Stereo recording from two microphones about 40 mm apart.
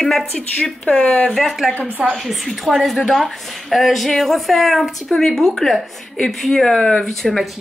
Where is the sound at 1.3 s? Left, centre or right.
Centre.